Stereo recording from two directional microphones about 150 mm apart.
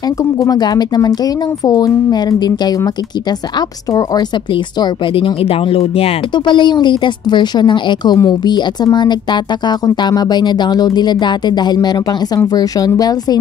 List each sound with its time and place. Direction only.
0.2 s speech: 25° left (ahead or behind)